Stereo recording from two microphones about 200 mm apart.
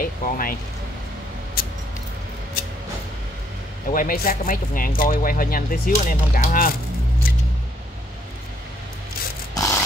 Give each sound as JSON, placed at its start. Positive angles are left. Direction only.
{"t": 0.0, "sound": "speech", "side_deg": 45}
{"t": 1.6, "sound": "a sound", "side_deg": 50}
{"t": 3.9, "sound": "speech", "side_deg": 45}
{"t": 9.5, "sound": "zipper", "side_deg": 15}